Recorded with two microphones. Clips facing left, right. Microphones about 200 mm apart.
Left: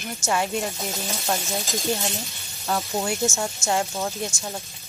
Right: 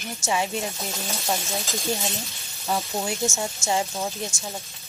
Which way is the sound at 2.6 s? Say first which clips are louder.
Left 1 dB; 5° right (ahead or behind).